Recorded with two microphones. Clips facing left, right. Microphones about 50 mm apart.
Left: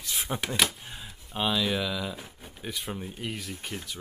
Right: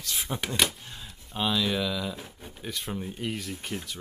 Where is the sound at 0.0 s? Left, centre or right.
Centre.